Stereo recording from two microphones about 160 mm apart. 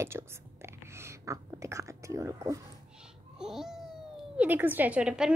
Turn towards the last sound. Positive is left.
turn(degrees=-5)  # may be behind; listen again after turning